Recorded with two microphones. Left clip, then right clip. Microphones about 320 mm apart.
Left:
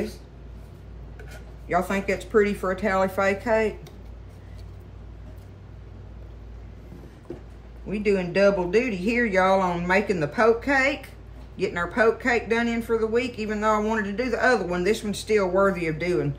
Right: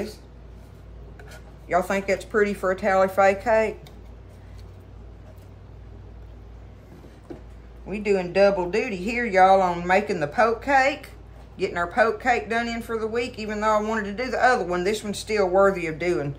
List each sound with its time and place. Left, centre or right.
1.7 s speech: centre
7.9 s speech: centre